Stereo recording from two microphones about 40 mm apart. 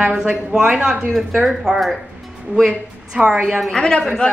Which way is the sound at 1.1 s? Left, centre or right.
Centre.